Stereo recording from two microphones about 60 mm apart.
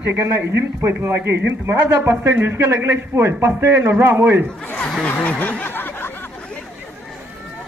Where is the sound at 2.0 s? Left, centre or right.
Right.